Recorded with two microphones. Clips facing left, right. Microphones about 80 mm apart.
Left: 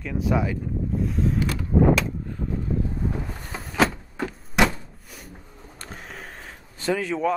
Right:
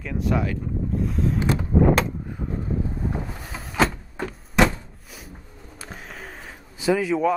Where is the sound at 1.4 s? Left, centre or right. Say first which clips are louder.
Right 3 dB; right.